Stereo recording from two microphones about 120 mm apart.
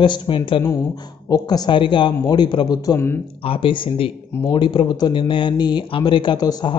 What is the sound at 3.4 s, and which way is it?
Speech, 45° left (ahead or behind).